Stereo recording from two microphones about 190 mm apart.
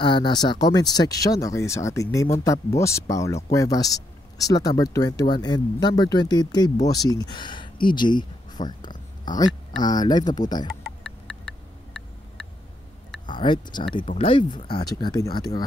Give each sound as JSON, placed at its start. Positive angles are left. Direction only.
{"t": 0.0, "sound": "speech", "side_deg": 25}
{"t": 11.1, "sound": "a sound", "side_deg": -5}
{"t": 13.3, "sound": "speech", "side_deg": 25}